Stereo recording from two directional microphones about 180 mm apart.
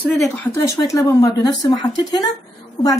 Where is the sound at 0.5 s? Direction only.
15° left (ahead or behind).